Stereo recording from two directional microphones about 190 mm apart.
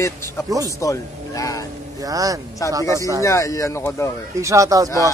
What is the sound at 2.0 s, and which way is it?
Speech, 20° right (ahead or behind).